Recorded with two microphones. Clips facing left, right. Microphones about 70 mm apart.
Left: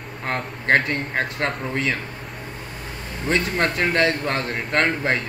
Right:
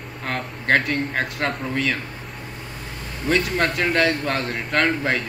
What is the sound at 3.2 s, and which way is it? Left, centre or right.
Speech, centre.